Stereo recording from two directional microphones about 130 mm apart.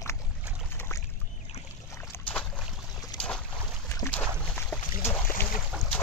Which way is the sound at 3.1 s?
30° left (ahead or behind).